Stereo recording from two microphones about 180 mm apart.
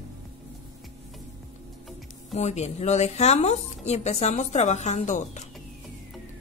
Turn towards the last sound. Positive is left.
turn(degrees=40)  # may be behind; listen again after turning